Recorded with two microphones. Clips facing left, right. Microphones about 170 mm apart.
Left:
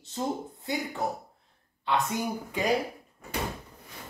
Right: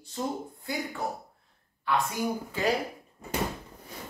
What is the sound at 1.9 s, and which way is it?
Speech, 20° left (ahead or behind).